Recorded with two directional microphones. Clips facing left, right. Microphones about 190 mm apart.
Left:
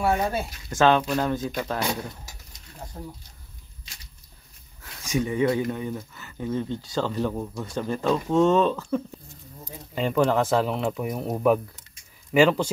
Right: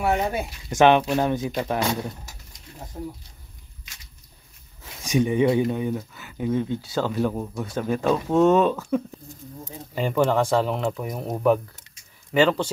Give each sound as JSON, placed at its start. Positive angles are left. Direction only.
{"t": 0.0, "sound": "speech", "side_deg": -20}
{"t": 3.9, "sound": "a sound", "side_deg": 30}
{"t": 4.8, "sound": "speech", "side_deg": -20}